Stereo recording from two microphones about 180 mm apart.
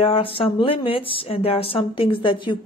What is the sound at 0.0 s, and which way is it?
Speech, 30° left (ahead or behind).